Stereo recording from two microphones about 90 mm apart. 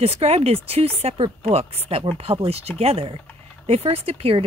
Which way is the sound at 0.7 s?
90° right.